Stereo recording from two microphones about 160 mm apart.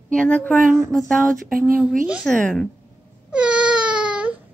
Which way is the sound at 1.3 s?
60° right (ahead or behind).